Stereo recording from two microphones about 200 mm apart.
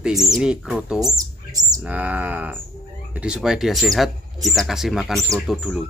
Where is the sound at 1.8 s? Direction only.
5° right (ahead or behind).